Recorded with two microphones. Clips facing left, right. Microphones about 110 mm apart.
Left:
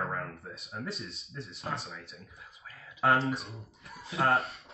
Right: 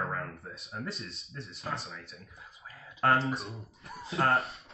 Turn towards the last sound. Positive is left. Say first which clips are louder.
# even
turn(degrees=0)  # may be behind; listen again after turning